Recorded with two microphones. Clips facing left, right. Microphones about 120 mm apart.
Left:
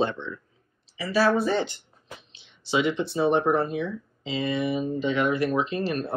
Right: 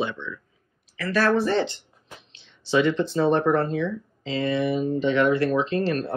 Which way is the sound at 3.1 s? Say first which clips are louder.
Right 1 dB; 15° left (ahead or behind).